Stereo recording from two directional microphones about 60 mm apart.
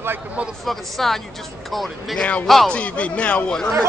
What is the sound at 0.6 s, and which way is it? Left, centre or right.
Speech, centre.